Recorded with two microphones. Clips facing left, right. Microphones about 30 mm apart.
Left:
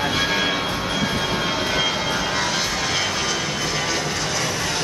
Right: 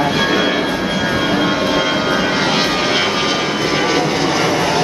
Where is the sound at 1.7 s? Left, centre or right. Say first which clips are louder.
Right 6 dB; right.